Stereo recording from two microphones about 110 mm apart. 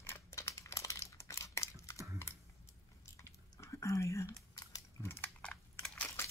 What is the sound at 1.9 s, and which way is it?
Typing, 30° right (ahead or behind).